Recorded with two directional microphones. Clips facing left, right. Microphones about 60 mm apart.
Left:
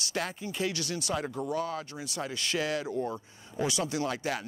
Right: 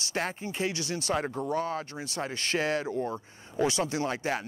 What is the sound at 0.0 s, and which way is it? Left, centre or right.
Speech, right.